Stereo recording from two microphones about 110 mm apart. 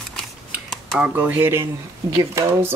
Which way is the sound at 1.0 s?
15° right (ahead or behind).